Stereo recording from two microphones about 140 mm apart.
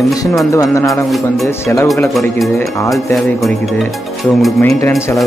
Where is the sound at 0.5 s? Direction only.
20° left (ahead or behind).